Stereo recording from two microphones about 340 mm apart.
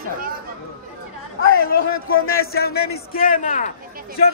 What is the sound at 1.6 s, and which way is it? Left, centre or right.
A man's voice, left.